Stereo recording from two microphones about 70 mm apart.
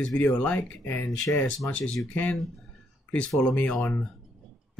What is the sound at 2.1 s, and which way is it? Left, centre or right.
Speech, left.